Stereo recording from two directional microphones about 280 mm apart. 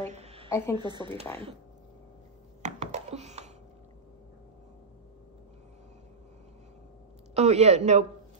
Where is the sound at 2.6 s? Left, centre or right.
Right.